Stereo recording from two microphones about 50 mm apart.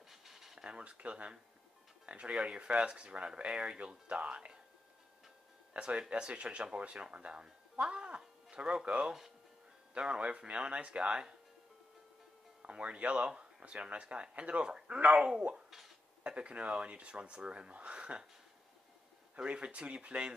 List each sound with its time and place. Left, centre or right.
0.1 s a sound: centre
0.7 s speech: right
5.7 s speech: right
12.6 s speech: right
19.3 s speech: right